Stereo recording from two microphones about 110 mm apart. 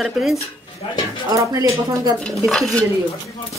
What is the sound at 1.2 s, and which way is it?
Speech, 30° right (ahead or behind).